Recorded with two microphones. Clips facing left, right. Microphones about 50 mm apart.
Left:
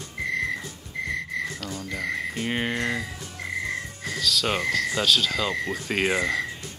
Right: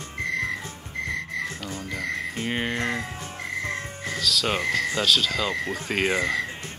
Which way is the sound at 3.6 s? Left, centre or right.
Right.